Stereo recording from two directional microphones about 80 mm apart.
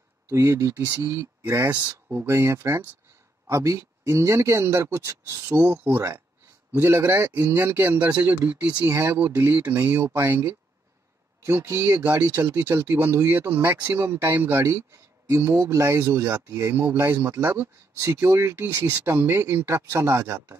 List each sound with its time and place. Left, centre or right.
0.3 s speech: right
0.8 s speech: right
7.6 s speech: right
8.9 s speech: right